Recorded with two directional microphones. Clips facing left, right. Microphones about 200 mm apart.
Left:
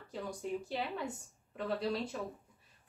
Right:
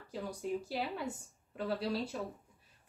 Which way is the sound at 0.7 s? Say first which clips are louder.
Even; 5° right (ahead or behind).